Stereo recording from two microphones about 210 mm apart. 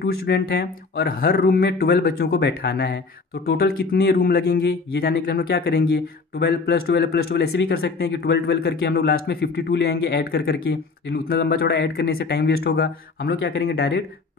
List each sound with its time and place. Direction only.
0.0 s speech: 50° left (ahead or behind)